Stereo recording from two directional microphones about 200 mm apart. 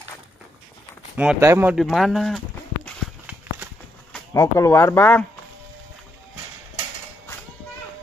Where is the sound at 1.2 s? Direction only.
10° right (ahead or behind).